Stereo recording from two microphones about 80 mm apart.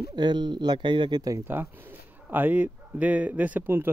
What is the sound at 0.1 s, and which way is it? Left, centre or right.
Speech, right.